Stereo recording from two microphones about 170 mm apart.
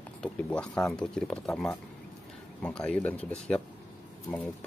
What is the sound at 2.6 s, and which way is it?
Speech, 5° left (ahead or behind).